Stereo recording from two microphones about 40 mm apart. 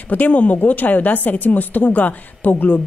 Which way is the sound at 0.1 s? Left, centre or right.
Left.